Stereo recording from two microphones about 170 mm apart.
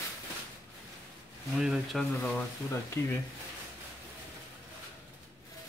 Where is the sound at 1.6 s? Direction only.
Centre (ahead or behind).